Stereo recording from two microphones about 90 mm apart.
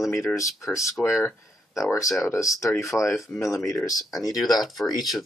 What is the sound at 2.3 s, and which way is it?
Speech, 35° left (ahead or behind).